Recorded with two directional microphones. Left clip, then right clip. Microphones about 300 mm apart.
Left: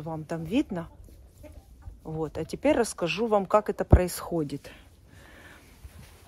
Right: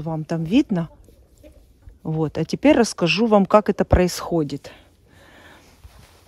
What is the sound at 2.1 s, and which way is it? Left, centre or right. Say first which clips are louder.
Speech: right 8 dB; right.